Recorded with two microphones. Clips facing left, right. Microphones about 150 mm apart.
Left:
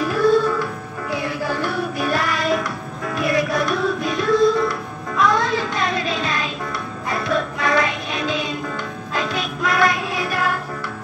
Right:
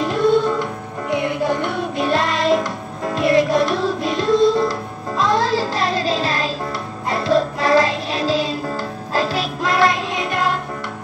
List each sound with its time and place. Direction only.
0.0 s music: 25° right (ahead or behind)